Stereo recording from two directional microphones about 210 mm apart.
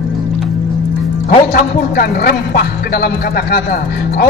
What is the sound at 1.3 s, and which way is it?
A man's voice, 45° left (ahead or behind).